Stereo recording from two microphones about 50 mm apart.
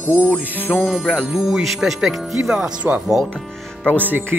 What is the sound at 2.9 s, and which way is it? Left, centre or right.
Speech, right.